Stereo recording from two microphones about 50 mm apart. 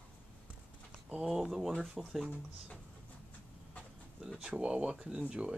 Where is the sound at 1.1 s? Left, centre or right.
Centre.